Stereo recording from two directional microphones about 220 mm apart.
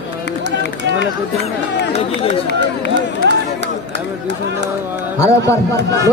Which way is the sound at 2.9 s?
50° right (ahead or behind).